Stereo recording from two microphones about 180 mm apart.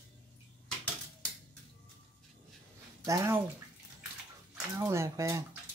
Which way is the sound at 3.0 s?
15° right (ahead or behind).